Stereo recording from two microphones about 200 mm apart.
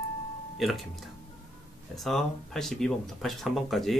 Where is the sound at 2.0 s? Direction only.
Centre (ahead or behind).